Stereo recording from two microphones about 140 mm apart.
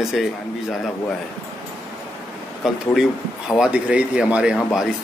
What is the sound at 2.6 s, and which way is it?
A man's voice, 5° right (ahead or behind).